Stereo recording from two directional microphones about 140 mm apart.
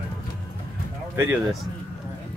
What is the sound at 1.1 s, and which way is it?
Speech, 15° right (ahead or behind).